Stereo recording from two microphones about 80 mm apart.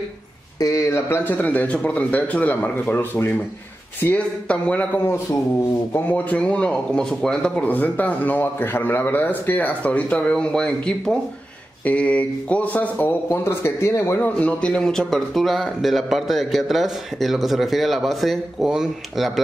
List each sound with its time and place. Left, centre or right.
0.6 s speech: left
1.4 s speech: left
5.9 s speech: left
13.3 s a man's voice: left
14.2 s speech: centre